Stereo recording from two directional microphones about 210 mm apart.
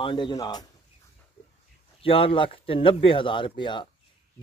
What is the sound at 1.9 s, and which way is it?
Speech, 25° left (ahead or behind).